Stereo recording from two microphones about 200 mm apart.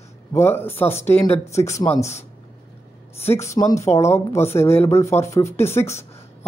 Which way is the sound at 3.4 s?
15° left (ahead or behind).